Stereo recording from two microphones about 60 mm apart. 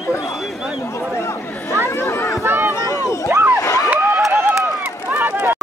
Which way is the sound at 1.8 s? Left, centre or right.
Left.